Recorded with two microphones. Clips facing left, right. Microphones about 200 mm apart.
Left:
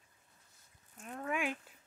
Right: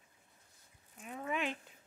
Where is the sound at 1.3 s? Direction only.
10° left (ahead or behind).